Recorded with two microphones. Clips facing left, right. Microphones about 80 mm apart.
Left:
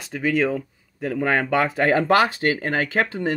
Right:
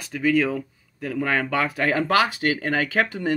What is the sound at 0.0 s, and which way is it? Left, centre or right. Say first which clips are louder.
Speech: even; left.